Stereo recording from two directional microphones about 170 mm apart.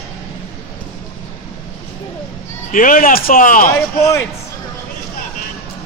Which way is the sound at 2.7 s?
55° left (ahead or behind).